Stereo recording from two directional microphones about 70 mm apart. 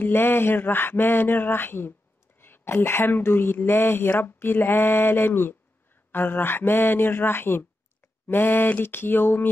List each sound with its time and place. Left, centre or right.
0.0 s speech: left